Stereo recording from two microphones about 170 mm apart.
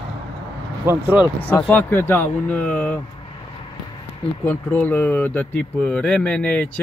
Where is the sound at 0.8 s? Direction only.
10° right (ahead or behind).